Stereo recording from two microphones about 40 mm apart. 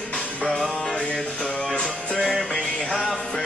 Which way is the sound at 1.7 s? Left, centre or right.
Left.